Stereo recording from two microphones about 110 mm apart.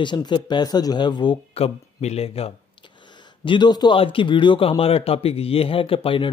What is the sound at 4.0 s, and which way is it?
A man's voice, 50° left (ahead or behind).